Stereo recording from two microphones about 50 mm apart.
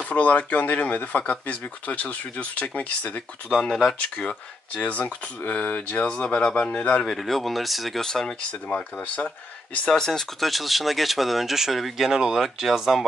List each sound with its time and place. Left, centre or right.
0.0 s speech: left
3.5 s speech: centre
7.1 s speech: centre
8.6 s speech: left
9.8 s speech: centre